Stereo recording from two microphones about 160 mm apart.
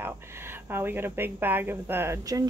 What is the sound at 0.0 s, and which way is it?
Speech, 15° right (ahead or behind).